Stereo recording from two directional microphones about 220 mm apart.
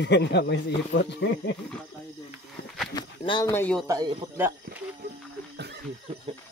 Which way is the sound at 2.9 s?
20° left (ahead or behind).